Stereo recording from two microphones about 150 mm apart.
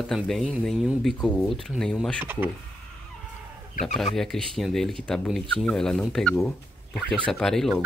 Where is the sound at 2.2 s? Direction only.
15° right (ahead or behind).